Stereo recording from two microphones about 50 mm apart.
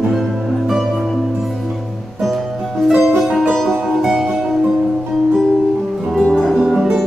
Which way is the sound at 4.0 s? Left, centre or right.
Centre.